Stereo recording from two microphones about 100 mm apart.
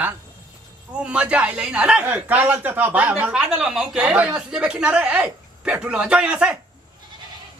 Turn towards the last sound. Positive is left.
turn(degrees=-10)  # may be behind; listen again after turning